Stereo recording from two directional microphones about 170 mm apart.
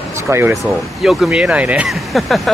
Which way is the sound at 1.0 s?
5° right (ahead or behind).